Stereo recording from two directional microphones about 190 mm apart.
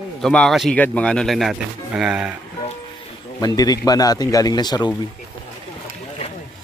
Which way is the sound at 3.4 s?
20° left (ahead or behind).